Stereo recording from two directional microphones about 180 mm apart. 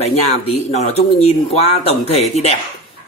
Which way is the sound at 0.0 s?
35° left (ahead or behind).